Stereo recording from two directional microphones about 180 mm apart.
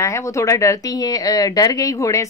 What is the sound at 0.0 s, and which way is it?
A woman's voice, 15° left (ahead or behind).